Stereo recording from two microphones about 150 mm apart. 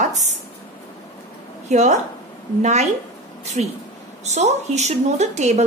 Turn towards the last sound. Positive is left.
turn(degrees=-50)  # may be behind; listen again after turning